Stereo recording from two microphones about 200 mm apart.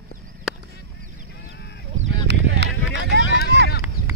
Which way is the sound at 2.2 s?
60° right (ahead or behind).